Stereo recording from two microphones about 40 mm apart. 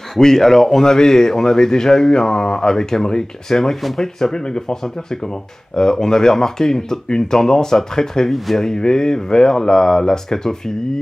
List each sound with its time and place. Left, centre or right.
0.2 s speech: centre